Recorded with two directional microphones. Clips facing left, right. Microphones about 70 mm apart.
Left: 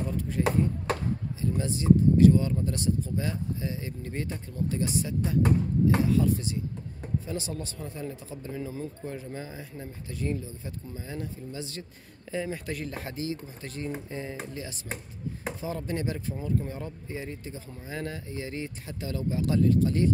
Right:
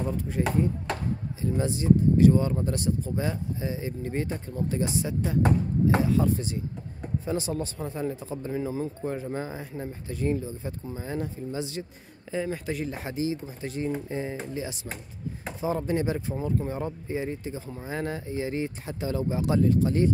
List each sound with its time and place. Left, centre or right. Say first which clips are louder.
0.4 s speech: even; right
12.3 s speech: right 3 dB; centre; by 20.1 s right